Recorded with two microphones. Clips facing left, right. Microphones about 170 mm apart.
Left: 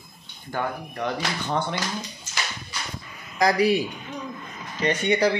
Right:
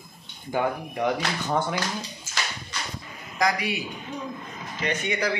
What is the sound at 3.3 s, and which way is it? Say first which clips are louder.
Speech: left 6 dB; 35° left (ahead or behind).